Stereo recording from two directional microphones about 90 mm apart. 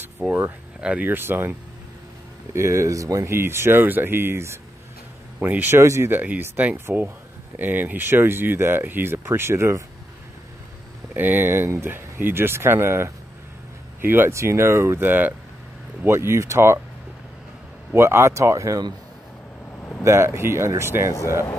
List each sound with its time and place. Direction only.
0.2 s speech: 15° right (ahead or behind)
2.5 s speech: 30° right (ahead or behind)
11.1 s speech: 20° right (ahead or behind)
17.9 s speech: 30° right (ahead or behind)
20.0 s speech: 30° right (ahead or behind)